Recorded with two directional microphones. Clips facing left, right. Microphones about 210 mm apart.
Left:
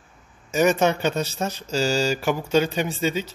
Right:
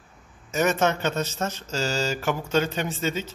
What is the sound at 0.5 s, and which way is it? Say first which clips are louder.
Speech: left 3 dB; 15° left (ahead or behind).